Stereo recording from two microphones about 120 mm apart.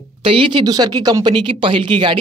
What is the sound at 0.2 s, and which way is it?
Speech, 50° right (ahead or behind).